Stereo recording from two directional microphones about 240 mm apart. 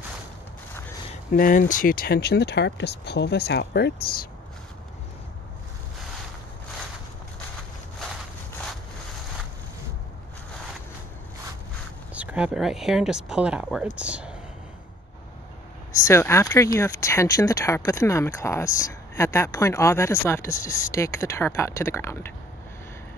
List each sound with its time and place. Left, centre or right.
1.3 s speech: left
12.1 s speech: centre
16.0 s speech: centre